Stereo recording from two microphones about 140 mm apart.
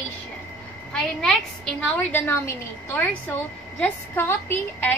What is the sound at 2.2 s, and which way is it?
A woman's voice, 20° left (ahead or behind).